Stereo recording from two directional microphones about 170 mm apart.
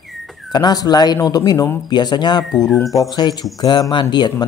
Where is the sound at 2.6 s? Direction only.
Centre (ahead or behind).